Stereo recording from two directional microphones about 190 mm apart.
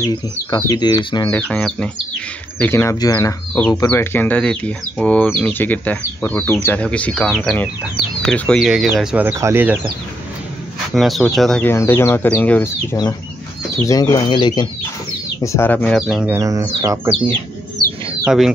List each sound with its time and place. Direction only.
0.0 s speech: 20° left (ahead or behind)
1.3 s speech: 5° left (ahead or behind); by 9.8 s 10° right (ahead or behind)
11.0 s speech: centre (ahead or behind)
11.7 s speech: 15° left (ahead or behind)
13.8 s speech: 20° left (ahead or behind)
15.4 s speech: 15° left (ahead or behind); by 16.3 s 5° right (ahead or behind)
16.3 s speech: 15° right (ahead or behind)
18.2 s speech: centre (ahead or behind)